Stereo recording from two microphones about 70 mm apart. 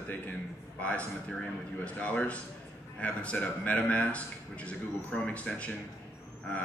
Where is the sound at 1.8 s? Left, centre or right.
Left.